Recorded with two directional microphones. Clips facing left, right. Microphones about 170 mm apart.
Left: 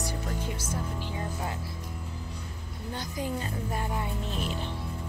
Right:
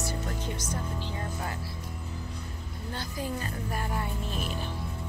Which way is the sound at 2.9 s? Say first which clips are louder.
Left 1 dB; 20° left (ahead or behind).